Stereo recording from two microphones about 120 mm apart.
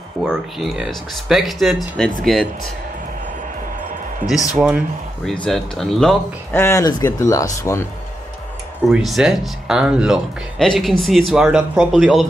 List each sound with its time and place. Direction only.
0.2 s speech: centre (ahead or behind)
4.2 s speech: 15° left (ahead or behind)
4.6 s speech: 5° right (ahead or behind)
5.3 s speech: 5° left (ahead or behind)
6.5 s speech: 20° left (ahead or behind)
8.9 s speech: 5° right (ahead or behind)